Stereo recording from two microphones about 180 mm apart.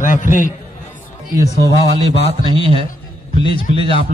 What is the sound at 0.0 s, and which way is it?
Speech, 45° left (ahead or behind).